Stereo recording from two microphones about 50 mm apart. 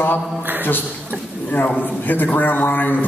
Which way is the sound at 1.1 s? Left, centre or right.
Right.